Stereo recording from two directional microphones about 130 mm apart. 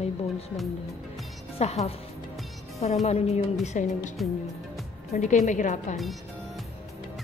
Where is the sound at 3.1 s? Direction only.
55° left (ahead or behind).